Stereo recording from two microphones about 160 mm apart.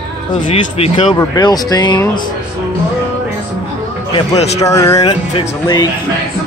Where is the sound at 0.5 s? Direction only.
35° left (ahead or behind).